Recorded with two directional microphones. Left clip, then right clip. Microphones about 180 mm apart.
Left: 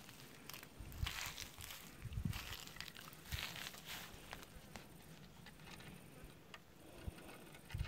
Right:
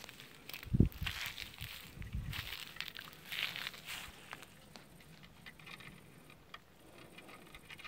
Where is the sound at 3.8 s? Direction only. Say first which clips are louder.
Right 5 dB; 15° left (ahead or behind).